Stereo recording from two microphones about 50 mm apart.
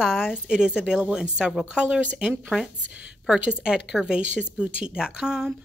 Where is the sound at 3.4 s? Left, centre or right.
Centre.